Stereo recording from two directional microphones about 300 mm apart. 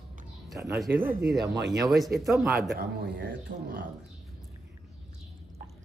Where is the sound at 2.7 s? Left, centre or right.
Right.